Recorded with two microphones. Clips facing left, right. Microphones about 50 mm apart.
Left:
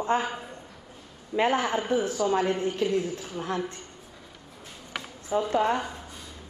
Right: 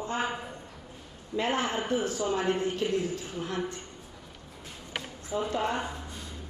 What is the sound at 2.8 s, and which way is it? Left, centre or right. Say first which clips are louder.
Speech: left 3 dB; left.